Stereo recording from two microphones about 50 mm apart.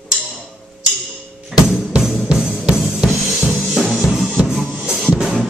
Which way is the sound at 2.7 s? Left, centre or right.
Centre.